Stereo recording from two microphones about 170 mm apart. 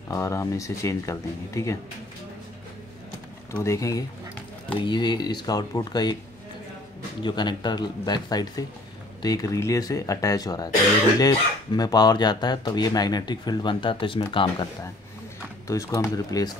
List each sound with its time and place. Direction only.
0.1 s speech: 20° left (ahead or behind)
3.5 s speech: 15° left (ahead or behind)
7.2 s speech: 25° left (ahead or behind)
15.7 s speech: 20° left (ahead or behind)